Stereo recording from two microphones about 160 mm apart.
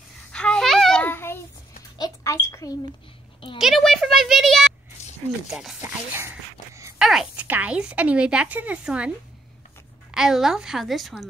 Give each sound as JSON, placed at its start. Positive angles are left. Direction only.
{"t": 0.3, "sound": "babbling", "side_deg": 5}
{"t": 2.0, "sound": "a sound", "side_deg": 20}
{"t": 3.5, "sound": "a sound", "side_deg": 0}
{"t": 5.5, "sound": "a woman's voice", "side_deg": 0}
{"t": 5.8, "sound": "speech", "side_deg": -15}
{"t": 7.0, "sound": "speech", "side_deg": -5}
{"t": 10.1, "sound": "a woman's voice", "side_deg": -5}